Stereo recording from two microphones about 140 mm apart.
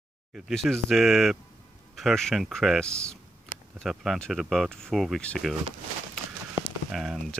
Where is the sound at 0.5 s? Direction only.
5° left (ahead or behind).